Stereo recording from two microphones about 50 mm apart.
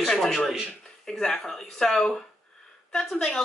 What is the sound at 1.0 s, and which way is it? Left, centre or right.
Speech, centre.